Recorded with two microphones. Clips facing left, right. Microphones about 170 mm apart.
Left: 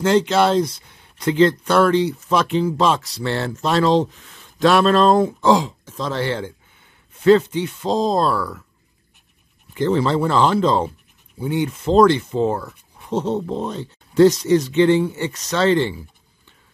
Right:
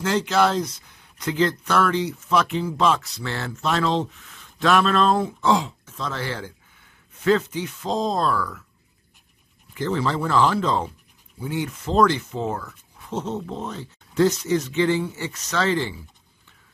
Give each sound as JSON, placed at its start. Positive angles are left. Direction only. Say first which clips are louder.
{"t": 0.0, "sound": "speech", "louder": "left 4 dB", "side_deg": 25}
{"t": 9.8, "sound": "speech", "louder": "left 6 dB", "side_deg": 30}
{"t": 14.8, "sound": "speech", "louder": "left 6 dB", "side_deg": 70}
{"t": 15.3, "sound": "speech", "louder": "left 6 dB", "side_deg": 30}